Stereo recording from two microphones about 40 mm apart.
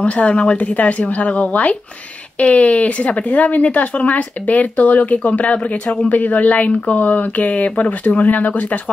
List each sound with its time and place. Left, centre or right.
0.0 s a woman's voice: left
0.6 s speech: left
5.4 s speech: left
6.0 s speech: left